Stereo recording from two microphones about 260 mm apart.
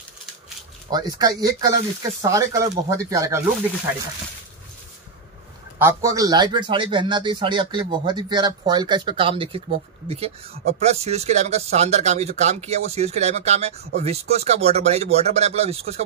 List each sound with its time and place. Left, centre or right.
0.8 s speech: centre
5.8 s a man's voice: centre